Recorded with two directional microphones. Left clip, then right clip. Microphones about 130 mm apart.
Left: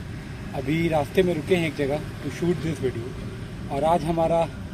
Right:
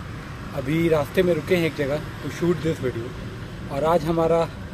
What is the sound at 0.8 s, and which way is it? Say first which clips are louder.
Speech: right 2 dB; 25° right (ahead or behind).